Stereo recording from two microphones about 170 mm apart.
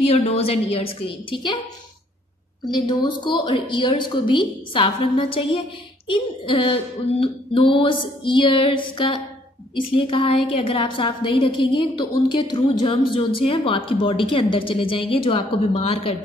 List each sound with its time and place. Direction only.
0.1 s a woman's voice: 35° left (ahead or behind)
2.9 s a woman's voice: 25° left (ahead or behind)